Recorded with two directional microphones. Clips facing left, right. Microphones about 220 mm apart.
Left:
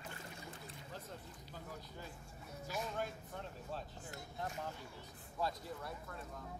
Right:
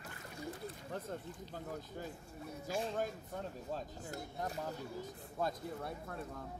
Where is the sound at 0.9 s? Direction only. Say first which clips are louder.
Right 8 dB; 55° right (ahead or behind).